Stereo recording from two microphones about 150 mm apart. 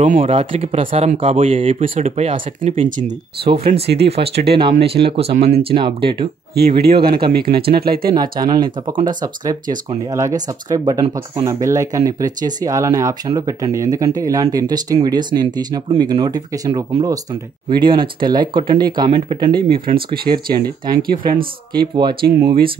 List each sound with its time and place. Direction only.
0.0 s speech: 50° right (ahead or behind)
6.8 s speech: 90° right
8.1 s speech: 25° right (ahead or behind)
10.1 s speech: 25° right (ahead or behind)